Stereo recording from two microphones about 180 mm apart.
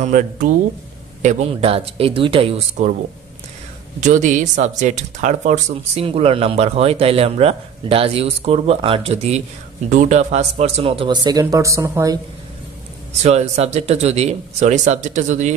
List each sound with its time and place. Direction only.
0.0 s speech: 45° right (ahead or behind)
1.2 s speech: 35° right (ahead or behind)
4.0 s speech: 45° right (ahead or behind); by 12.2 s 20° right (ahead or behind)
13.2 s speech: 35° right (ahead or behind)